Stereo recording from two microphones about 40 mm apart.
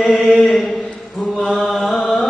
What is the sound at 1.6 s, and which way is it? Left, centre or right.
Chant, left.